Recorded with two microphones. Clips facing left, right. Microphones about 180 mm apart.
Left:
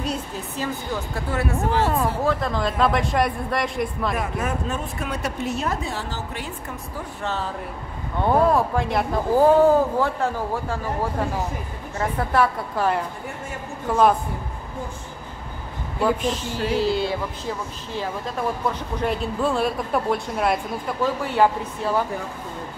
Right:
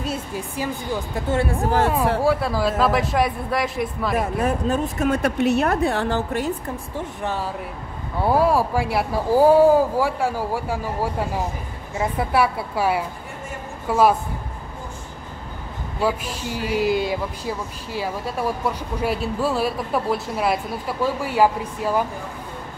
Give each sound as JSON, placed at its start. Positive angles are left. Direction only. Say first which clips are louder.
{"t": 0.0, "sound": "speech", "louder": "right 1 dB", "side_deg": -5}
{"t": 1.3, "sound": "speech", "louder": "right 3 dB", "side_deg": -25}
{"t": 2.2, "sound": "a man's voice", "louder": "right 3 dB", "side_deg": -5}
{"t": 4.4, "sound": "speech", "louder": "right 5 dB", "side_deg": -35}
{"t": 5.4, "sound": "a woman's voice", "louder": "right 8 dB", "side_deg": -65}
{"t": 7.2, "sound": "speech", "louder": "left 1 dB", "side_deg": -10}
{"t": 16.0, "sound": "speech", "louder": "left 2 dB", "side_deg": -5}